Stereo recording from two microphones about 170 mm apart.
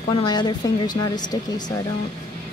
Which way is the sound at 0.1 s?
25° left (ahead or behind).